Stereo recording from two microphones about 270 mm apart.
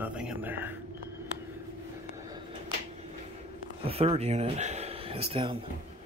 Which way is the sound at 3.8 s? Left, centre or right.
Right.